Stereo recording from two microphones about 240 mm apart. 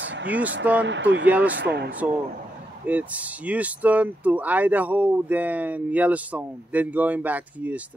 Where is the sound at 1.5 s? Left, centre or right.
Right.